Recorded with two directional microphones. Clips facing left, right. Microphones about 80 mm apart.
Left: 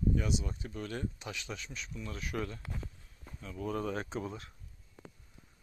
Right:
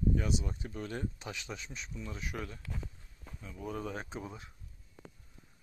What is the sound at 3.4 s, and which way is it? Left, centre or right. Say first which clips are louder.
Speech: left 4 dB; centre.